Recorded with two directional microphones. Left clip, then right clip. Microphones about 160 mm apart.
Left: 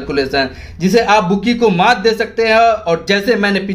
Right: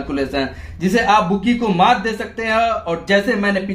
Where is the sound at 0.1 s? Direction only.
40° left (ahead or behind).